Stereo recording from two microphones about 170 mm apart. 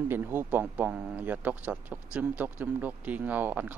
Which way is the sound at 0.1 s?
10° right (ahead or behind).